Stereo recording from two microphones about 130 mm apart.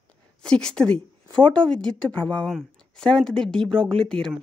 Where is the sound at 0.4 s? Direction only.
5° left (ahead or behind).